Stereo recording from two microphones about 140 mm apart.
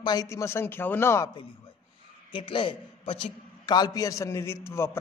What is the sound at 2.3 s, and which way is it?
A man's voice, 35° left (ahead or behind).